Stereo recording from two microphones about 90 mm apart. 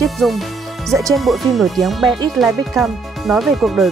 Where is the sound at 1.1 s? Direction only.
Centre (ahead or behind).